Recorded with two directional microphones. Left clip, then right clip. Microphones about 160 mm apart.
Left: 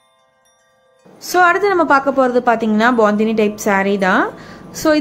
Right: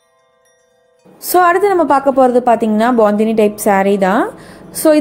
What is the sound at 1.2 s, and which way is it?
A woman's voice, 25° right (ahead or behind).